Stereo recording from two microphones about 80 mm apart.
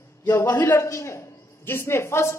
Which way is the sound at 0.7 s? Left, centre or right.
Left.